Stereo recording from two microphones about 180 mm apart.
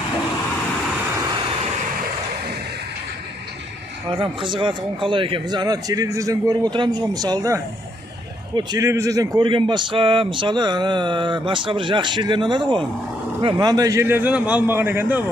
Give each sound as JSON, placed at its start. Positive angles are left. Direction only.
{"t": 4.2, "sound": "a man's voice", "side_deg": -25}